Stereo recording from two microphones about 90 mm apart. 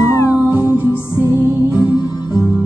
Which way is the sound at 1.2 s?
30° right (ahead or behind).